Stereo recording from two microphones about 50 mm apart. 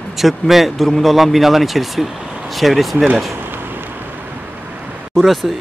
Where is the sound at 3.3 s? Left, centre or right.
Right.